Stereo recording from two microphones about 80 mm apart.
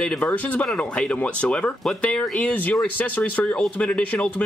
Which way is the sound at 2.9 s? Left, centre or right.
Centre.